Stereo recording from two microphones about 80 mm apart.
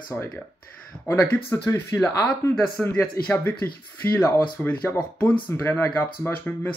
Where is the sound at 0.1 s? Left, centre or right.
Left.